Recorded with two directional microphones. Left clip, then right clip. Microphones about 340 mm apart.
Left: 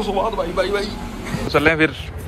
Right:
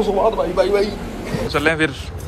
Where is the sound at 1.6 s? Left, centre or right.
Centre.